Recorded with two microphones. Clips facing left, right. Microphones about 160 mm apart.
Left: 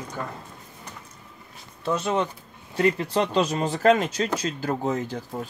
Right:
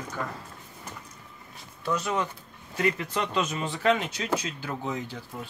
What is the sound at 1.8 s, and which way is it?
Speech, 25° left (ahead or behind).